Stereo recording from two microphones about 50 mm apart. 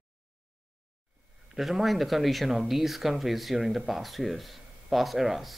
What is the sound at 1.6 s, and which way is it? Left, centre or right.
Speech, centre.